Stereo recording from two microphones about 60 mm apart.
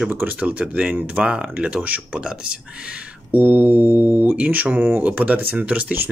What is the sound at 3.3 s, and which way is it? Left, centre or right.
Speech, right.